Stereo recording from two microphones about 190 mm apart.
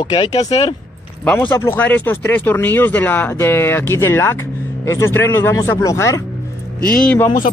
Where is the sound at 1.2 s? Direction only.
10° left (ahead or behind).